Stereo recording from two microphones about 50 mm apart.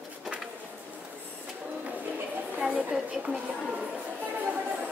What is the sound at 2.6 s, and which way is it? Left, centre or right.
Speech, centre.